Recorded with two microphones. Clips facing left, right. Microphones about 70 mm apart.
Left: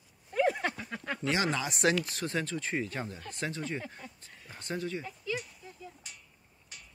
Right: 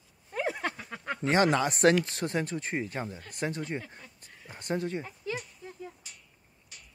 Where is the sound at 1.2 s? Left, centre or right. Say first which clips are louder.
Right 7 dB; right.